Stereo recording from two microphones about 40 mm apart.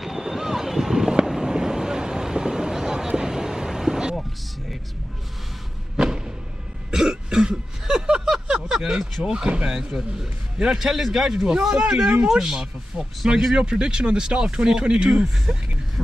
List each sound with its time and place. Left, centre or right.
0.0 s vehicle: centre
6.0 s a sound: centre
6.9 s throat clearing: centre
8.5 s a sound: centre
9.2 s a man's voice: right; by 13.6 s centre
13.6 s speech: right